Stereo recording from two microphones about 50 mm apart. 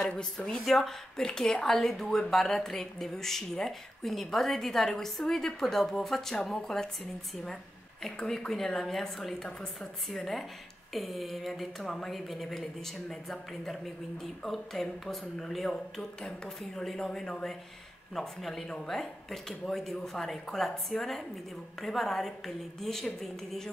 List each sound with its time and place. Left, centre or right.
0.0 s a woman's voice: centre
0.7 s a woman's voice: centre
8.2 s a woman's voice: centre